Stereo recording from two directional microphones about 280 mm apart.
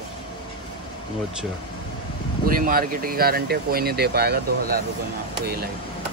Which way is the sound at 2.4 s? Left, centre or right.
Right.